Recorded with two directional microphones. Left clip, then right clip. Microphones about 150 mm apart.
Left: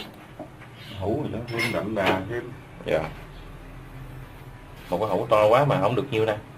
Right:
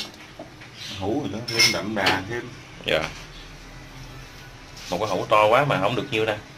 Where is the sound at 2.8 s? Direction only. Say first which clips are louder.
Right 2 dB; 10° left (ahead or behind).